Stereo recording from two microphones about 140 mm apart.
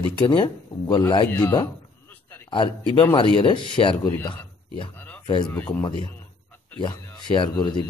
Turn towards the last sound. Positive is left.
turn(degrees=35)  # may be behind; listen again after turning